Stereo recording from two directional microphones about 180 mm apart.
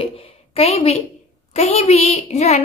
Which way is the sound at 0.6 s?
35° left (ahead or behind).